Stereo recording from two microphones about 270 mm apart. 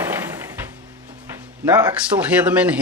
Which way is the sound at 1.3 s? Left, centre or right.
Centre.